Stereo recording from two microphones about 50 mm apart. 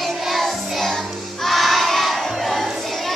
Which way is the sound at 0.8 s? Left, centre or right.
Centre.